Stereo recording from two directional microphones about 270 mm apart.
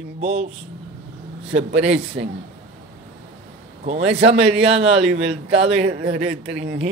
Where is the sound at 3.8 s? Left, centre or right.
Right.